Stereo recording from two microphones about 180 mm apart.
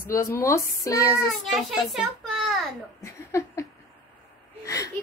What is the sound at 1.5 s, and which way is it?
A child's voice, centre (ahead or behind).